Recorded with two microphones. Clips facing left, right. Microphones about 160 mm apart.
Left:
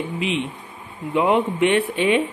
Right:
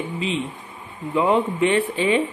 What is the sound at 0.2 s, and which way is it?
Speech, 70° left (ahead or behind).